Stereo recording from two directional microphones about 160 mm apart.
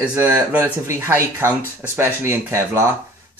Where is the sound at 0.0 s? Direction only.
10° right (ahead or behind).